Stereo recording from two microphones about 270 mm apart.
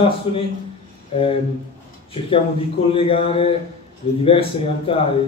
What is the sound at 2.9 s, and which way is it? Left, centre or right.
A man's voice, left.